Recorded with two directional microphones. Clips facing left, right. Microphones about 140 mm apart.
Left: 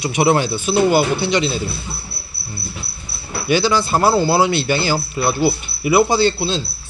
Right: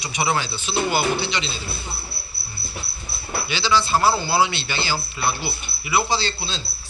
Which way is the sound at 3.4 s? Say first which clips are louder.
Left 6 dB; 45° left (ahead or behind).